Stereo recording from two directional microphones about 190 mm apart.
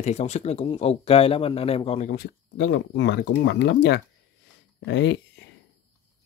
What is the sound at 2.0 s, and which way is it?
Speech, 55° left (ahead or behind).